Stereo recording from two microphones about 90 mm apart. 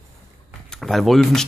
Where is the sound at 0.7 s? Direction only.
Centre (ahead or behind).